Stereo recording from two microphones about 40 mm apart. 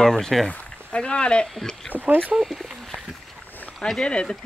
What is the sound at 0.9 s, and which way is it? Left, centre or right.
Speech, left.